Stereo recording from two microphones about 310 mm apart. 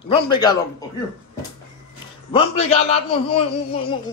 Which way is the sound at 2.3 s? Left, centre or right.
Centre.